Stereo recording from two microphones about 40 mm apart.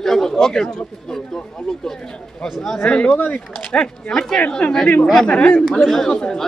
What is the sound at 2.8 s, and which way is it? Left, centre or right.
A man's voice, left.